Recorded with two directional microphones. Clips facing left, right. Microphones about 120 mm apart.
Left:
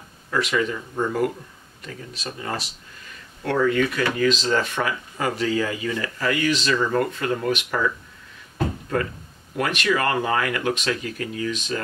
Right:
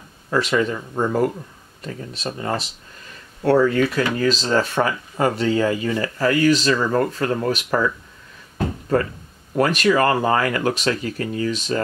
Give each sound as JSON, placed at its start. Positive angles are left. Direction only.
{"t": 0.3, "sound": "speech", "side_deg": -30}
{"t": 9.6, "sound": "speech", "side_deg": -35}